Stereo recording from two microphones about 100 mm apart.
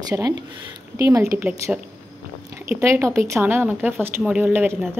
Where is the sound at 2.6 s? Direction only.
25° right (ahead or behind).